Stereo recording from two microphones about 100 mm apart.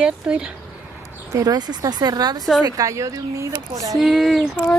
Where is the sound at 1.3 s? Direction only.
40° right (ahead or behind).